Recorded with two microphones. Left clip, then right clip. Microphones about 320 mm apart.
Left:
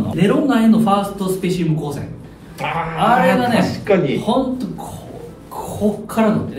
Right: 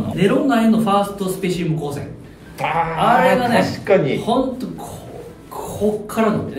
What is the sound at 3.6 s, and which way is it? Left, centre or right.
Speech, right.